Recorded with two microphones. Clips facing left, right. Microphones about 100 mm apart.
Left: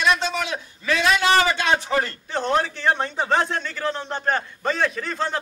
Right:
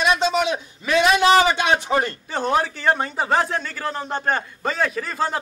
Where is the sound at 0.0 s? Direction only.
15° right (ahead or behind).